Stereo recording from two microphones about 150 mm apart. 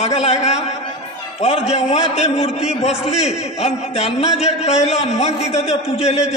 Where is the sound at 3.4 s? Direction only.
45° left (ahead or behind).